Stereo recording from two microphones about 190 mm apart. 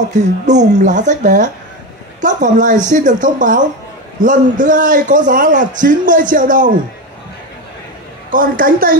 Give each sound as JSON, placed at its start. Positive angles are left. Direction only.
{"t": 0.2, "sound": "a man's voice", "side_deg": -40}
{"t": 8.3, "sound": "a man's voice", "side_deg": -45}